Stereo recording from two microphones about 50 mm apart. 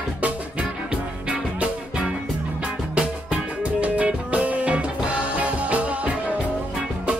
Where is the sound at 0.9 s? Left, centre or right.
Right.